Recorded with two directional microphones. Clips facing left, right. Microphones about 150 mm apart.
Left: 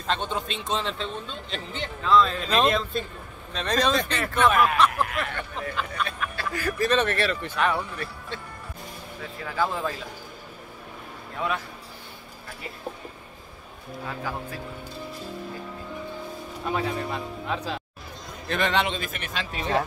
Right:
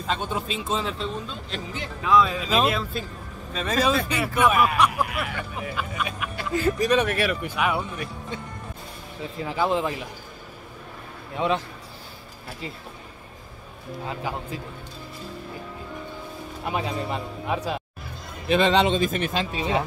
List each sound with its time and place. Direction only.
0.0 s a man's voice: 5° right (ahead or behind)
9.4 s speech: 20° right (ahead or behind)
11.3 s speech: 25° right (ahead or behind)
14.0 s speech: 20° right (ahead or behind)
16.7 s speech: 20° right (ahead or behind)